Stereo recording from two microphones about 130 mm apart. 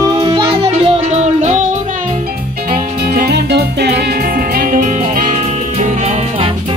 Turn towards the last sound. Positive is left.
turn(degrees=-70)  # may be behind; listen again after turning